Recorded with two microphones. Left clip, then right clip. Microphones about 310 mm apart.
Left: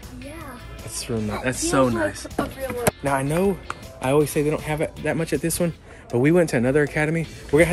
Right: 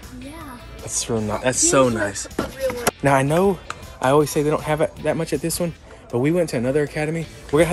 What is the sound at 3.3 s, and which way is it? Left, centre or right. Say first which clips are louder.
Speech: right 4 dB; centre.